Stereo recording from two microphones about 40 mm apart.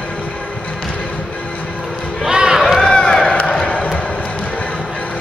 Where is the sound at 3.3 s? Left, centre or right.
Left.